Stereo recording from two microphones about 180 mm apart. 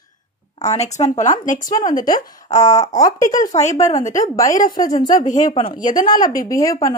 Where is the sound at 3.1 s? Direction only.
45° left (ahead or behind).